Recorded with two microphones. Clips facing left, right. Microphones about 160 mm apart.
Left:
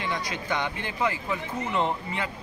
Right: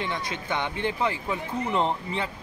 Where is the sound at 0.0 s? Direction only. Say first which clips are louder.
Even; 25° right (ahead or behind).